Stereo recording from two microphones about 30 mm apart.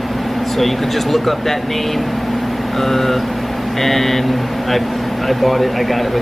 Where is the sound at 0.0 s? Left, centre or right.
Centre.